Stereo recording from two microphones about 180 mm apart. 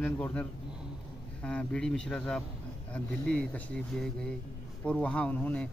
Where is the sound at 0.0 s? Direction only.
10° left (ahead or behind).